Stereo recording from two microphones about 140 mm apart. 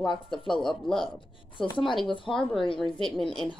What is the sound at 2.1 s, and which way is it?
Speech, 40° left (ahead or behind).